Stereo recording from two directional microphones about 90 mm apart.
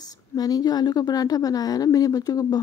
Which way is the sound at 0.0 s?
45° left (ahead or behind).